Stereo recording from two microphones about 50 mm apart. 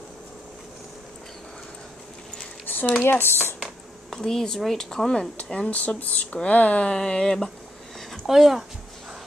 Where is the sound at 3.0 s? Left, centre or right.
Left.